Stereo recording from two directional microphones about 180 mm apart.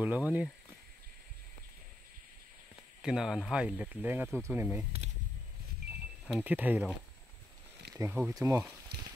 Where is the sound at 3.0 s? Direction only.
5° right (ahead or behind).